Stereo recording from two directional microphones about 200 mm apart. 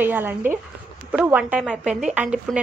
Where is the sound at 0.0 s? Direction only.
10° right (ahead or behind).